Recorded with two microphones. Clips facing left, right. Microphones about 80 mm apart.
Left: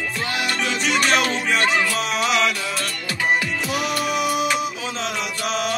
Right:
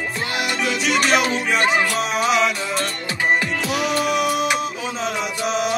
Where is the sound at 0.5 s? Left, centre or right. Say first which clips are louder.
Right 2 dB; centre.